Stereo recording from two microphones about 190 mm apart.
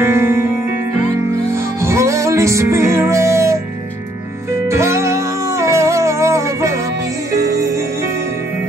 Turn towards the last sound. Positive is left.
turn(degrees=-15)  # may be behind; listen again after turning